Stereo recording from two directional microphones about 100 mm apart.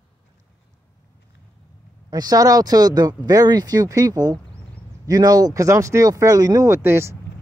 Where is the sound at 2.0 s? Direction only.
40° right (ahead or behind).